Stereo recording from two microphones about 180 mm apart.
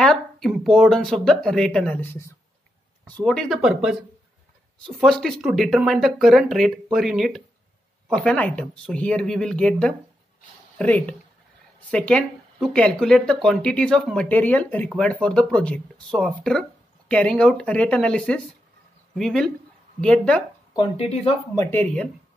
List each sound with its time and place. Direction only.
0.0 s speech: centre (ahead or behind)
20.7 s speech: 30° left (ahead or behind)
21.5 s speech: 10° left (ahead or behind)